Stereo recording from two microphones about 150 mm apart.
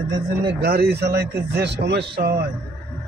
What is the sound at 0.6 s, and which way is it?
Speech, 90° right.